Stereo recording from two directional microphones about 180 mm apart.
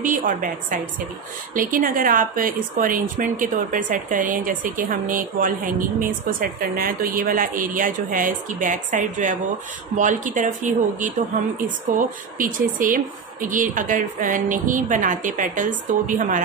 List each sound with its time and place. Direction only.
0.0 s a woman's voice: 50° right (ahead or behind)
12.4 s a woman's voice: 50° right (ahead or behind)